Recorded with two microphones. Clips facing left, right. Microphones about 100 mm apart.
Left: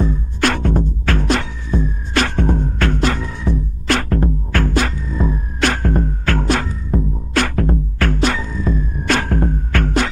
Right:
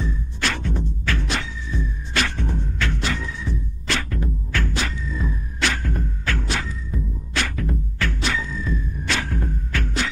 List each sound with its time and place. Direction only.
0.0 s music: 50° left (ahead or behind)